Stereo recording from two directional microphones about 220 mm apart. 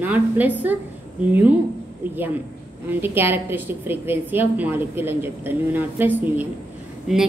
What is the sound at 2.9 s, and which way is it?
A woman's voice, 10° right (ahead or behind).